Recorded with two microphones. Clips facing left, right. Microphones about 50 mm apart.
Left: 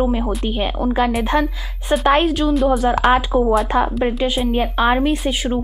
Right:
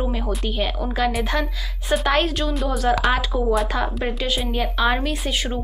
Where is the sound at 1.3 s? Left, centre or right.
Left.